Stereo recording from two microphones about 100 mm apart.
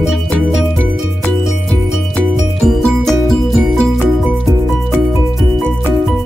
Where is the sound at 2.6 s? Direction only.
Centre (ahead or behind).